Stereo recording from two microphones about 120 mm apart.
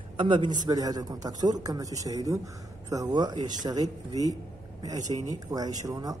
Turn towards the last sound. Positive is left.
turn(degrees=-30)  # may be behind; listen again after turning